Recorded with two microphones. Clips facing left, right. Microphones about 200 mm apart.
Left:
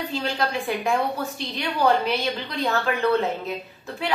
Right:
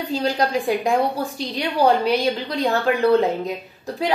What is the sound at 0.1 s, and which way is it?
A woman's voice, 40° right (ahead or behind).